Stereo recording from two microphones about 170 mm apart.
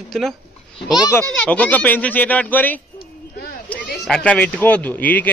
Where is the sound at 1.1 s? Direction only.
10° left (ahead or behind).